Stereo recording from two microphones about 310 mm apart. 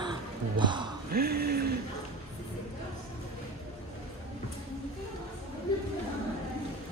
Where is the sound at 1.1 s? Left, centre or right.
Right.